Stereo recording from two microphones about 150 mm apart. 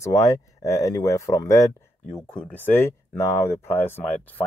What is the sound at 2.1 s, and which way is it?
Speech, 5° left (ahead or behind).